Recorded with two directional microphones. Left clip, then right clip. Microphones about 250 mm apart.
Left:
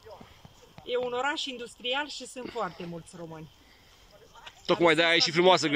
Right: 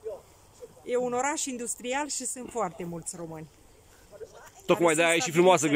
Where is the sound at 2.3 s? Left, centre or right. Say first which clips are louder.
Right 1 dB; centre.